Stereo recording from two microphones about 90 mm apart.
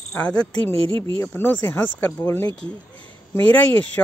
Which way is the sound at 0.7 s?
85° right.